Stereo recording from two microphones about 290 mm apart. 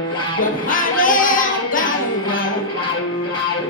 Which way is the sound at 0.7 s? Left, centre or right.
Left.